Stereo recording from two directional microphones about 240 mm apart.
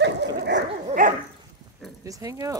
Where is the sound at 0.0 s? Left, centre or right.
Right.